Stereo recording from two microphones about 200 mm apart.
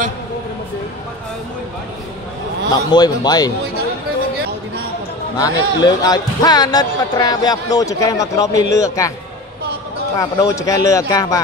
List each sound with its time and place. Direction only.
2.7 s a man's voice: 20° left (ahead or behind)
5.4 s a man's voice: 20° left (ahead or behind)
10.1 s speech: 15° left (ahead or behind)